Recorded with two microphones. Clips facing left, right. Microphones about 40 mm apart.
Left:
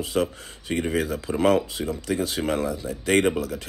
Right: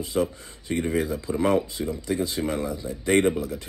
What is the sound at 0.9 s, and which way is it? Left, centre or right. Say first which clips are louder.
Speech: right 1 dB; left.